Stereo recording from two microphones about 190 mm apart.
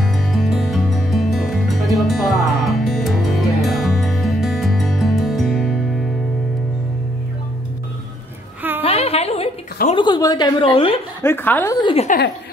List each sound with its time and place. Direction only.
0.0 s music: centre (ahead or behind)
8.8 s a sound: 30° left (ahead or behind)
9.8 s a woman's voice: 25° left (ahead or behind)
11.2 s speech: 10° left (ahead or behind)
11.8 s a woman's voice: 30° left (ahead or behind)